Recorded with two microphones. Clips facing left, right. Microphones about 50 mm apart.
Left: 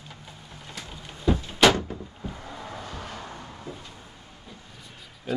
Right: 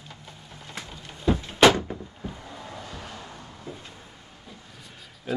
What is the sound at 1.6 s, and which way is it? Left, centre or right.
Door, centre.